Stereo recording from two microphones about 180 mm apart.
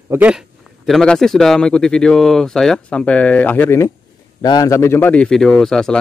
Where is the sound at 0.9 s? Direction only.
Centre (ahead or behind).